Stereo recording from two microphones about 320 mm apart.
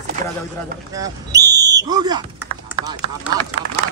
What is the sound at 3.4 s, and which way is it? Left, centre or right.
Speech, centre.